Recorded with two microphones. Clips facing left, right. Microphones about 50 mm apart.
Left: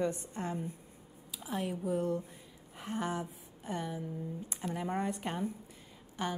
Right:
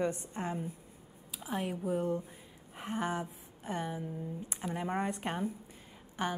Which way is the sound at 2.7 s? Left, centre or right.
Centre.